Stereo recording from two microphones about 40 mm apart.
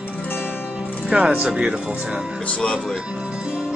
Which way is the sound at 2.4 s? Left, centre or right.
Left.